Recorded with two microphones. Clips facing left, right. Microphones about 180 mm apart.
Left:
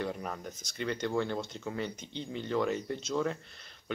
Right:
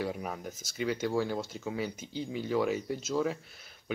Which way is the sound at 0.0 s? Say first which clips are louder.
Right 1 dB; 5° right (ahead or behind).